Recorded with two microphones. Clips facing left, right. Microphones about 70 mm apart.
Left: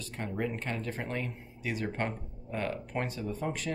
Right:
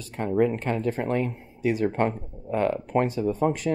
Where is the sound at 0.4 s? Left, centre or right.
Centre.